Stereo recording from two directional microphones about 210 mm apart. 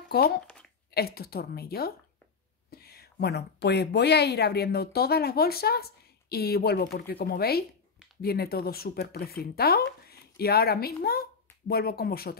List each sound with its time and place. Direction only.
0.1 s speech: 50° left (ahead or behind)